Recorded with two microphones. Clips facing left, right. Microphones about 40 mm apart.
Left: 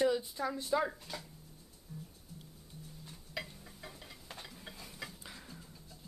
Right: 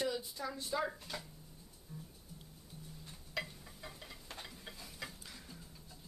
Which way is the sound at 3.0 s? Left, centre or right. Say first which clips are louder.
Right 2 dB; centre.